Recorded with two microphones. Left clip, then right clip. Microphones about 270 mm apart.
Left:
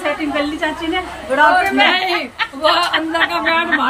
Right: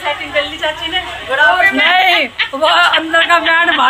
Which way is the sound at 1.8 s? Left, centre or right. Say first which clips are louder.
Right 5 dB; centre.